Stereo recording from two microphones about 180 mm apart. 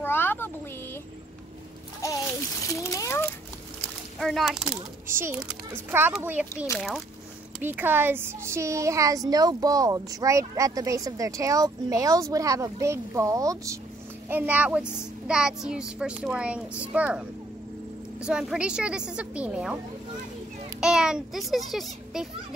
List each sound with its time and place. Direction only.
0.0 s a sound: 10° left (ahead or behind)
2.0 s a sound: 20° left (ahead or behind)
4.2 s a child's voice: centre (ahead or behind)
5.0 s a woman's voice: 15° right (ahead or behind)
18.2 s a child's voice: 5° right (ahead or behind)
20.8 s a child's voice: 5° right (ahead or behind)